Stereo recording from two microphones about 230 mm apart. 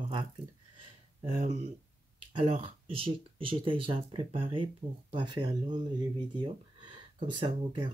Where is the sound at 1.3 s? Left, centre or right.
Right.